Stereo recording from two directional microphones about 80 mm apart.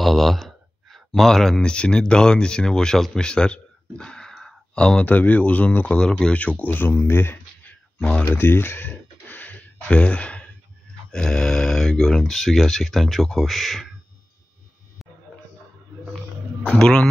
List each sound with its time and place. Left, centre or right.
0.0 s speech: centre; by 7.7 s left
8.0 s a man's voice: centre
8.4 s a sound: left
11.1 s speech: centre
16.6 s a man's voice: centre